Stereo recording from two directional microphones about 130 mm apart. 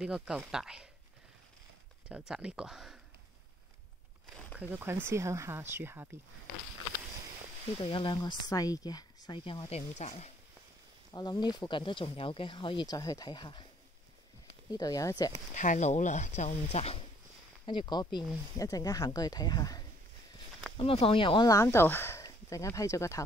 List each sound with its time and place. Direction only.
0.0 s speech: 5° right (ahead or behind)
2.0 s speech: 5° right (ahead or behind)
4.6 s speech: 15° right (ahead or behind)
7.8 s speech: 40° left (ahead or behind)
9.4 s speech: 45° left (ahead or behind)
9.8 s speech: 60° left (ahead or behind)
11.1 s speech: 35° left (ahead or behind)
14.7 s speech: 30° left (ahead or behind)
15.5 s speech: 75° left (ahead or behind); by 17.0 s 50° left (ahead or behind)
17.6 s speech: 35° left (ahead or behind)
20.7 s speech: 45° left (ahead or behind)
21.5 s speech: 20° left (ahead or behind)